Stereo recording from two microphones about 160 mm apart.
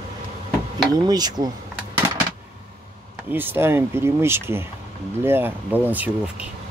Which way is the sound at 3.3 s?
15° right (ahead or behind).